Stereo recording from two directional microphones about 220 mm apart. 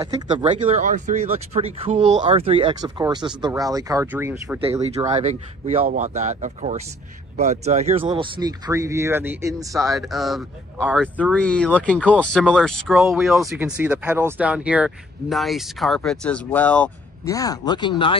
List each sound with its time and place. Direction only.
0.0 s speech: 20° right (ahead or behind)
5.1 s speech: 30° right (ahead or behind)
8.0 s speech: 20° right (ahead or behind)
9.8 s speech: centre (ahead or behind); by 18.1 s 20° left (ahead or behind)